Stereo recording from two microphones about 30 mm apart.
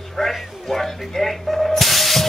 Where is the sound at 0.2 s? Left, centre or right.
Centre.